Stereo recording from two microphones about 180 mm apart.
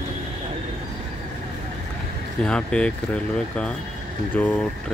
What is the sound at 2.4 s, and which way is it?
Speech, 5° left (ahead or behind).